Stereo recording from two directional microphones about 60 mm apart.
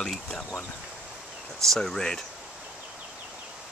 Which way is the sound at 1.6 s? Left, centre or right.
Centre.